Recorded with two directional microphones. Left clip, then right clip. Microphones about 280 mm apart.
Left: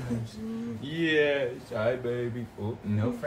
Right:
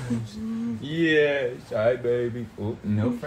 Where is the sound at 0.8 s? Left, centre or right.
Centre.